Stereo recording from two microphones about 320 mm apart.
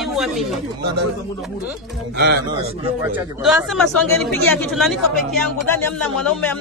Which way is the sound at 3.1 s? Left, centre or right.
Centre.